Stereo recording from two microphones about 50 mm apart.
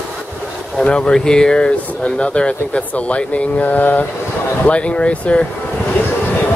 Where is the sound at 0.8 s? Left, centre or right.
Left.